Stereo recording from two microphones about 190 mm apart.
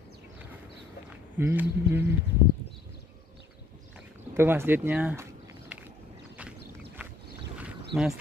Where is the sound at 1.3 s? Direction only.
10° right (ahead or behind).